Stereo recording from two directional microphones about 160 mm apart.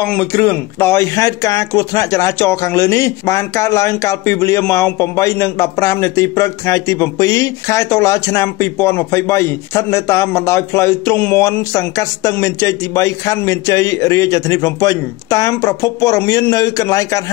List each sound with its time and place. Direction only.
0.0 s speech: 10° left (ahead or behind)